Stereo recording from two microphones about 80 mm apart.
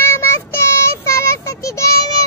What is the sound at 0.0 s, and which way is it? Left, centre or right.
Child singing, left.